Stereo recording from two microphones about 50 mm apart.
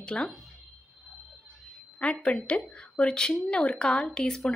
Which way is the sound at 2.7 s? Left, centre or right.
Left.